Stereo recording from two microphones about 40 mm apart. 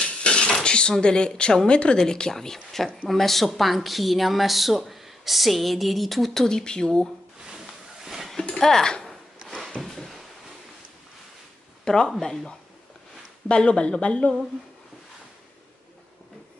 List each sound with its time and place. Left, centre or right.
0.0 s dishes: left
1.0 s speech: left
7.5 s a sound: centre
8.5 s speech: centre
9.8 s a sound: centre
11.8 s speech: centre
13.5 s speech: left